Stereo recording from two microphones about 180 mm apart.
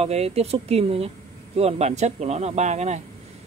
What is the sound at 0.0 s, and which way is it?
Speech, 35° right (ahead or behind).